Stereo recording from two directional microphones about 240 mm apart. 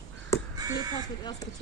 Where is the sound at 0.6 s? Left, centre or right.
Centre.